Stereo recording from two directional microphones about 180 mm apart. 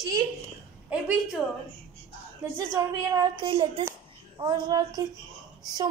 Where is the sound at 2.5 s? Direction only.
15° right (ahead or behind).